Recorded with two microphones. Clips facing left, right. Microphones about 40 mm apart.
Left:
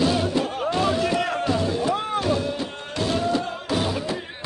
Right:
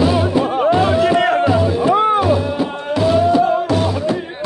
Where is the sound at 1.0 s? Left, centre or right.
Right.